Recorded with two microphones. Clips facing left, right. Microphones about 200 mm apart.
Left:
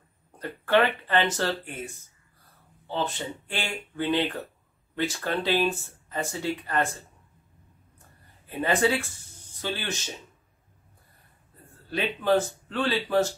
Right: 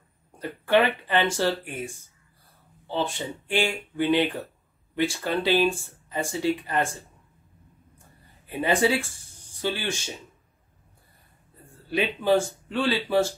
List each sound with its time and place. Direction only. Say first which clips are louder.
0.7 s speech: right 1 dB; 15° right (ahead or behind)
2.9 s speech: right 2 dB; 15° right (ahead or behind)
8.5 s speech: right 1 dB; 10° right (ahead or behind)
11.9 s speech: right 2 dB; 15° right (ahead or behind)